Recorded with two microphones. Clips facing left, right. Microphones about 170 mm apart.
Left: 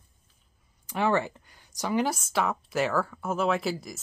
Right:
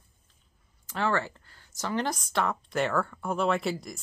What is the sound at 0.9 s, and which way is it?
A woman's voice, 15° left (ahead or behind).